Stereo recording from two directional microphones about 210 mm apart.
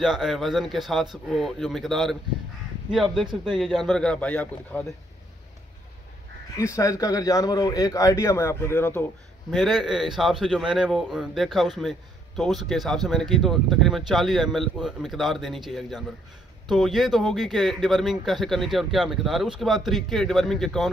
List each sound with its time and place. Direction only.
0.0 s a man's voice: centre (ahead or behind)
6.5 s a man's voice: 15° left (ahead or behind)
9.5 s a man's voice: centre (ahead or behind)